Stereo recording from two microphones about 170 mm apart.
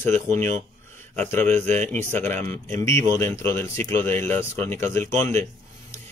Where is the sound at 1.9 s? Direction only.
10° left (ahead or behind).